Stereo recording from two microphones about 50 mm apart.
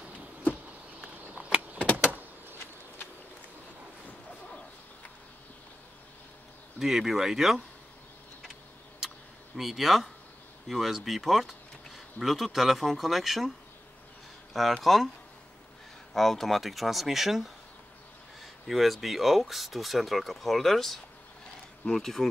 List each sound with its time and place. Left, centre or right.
1.2 s chop: right
1.8 s power windows: left
6.8 s speech: centre
9.6 s speech: centre
14.8 s speech: centre
16.1 s speech: centre